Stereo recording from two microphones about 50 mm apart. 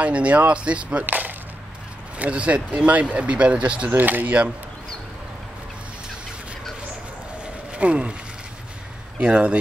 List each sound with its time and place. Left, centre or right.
0.0 s speech: right
1.0 s chop: right
2.1 s speech: right
3.9 s speech: right
7.8 s speech: right
9.2 s speech: right